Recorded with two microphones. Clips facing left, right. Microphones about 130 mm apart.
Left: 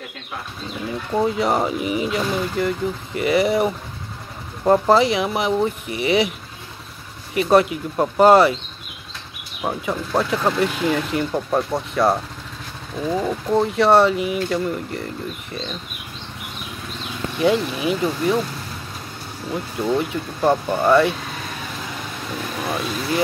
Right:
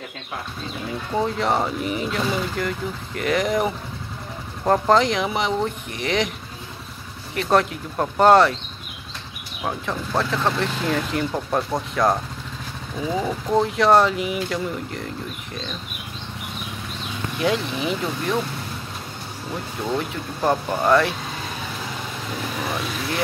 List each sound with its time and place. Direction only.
1.1 s speech: 5° left (ahead or behind)
7.3 s speech: 5° left (ahead or behind)
9.7 s speech: 10° left (ahead or behind)
13.6 s speech: centre (ahead or behind)
17.4 s speech: 5° left (ahead or behind)
20.0 s speech: centre (ahead or behind)
22.7 s speech: centre (ahead or behind)